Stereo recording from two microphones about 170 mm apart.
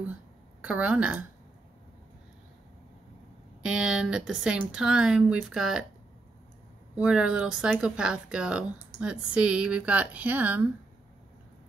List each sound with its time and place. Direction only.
0.6 s a woman's voice: 5° right (ahead or behind)
3.6 s speech: 5° right (ahead or behind)
7.0 s speech: 5° right (ahead or behind)